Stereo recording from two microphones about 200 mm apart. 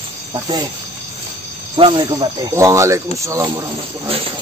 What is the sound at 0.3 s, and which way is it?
Speech, 20° right (ahead or behind).